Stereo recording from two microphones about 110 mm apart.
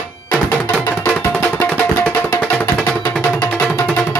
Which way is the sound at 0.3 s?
15° left (ahead or behind).